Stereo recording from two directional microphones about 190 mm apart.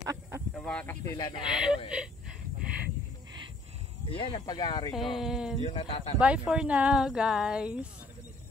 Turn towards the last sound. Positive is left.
turn(degrees=-5)  # may be behind; listen again after turning